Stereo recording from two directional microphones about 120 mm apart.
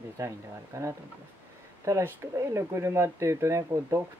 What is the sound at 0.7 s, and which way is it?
Speech, 25° right (ahead or behind).